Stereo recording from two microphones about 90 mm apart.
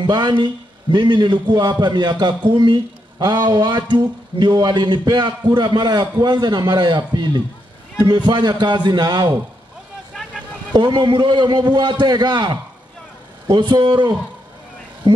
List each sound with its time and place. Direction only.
0.0 s a man's voice: 55° right (ahead or behind)
10.7 s a man's voice: 55° right (ahead or behind)
13.6 s a man's voice: 60° right (ahead or behind)